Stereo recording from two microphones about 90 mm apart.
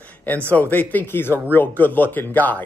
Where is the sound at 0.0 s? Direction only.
15° left (ahead or behind).